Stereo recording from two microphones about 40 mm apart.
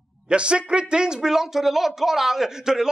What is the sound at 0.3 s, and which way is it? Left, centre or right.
Speech, right.